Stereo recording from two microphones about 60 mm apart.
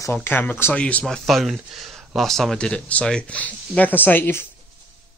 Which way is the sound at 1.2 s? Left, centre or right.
Centre.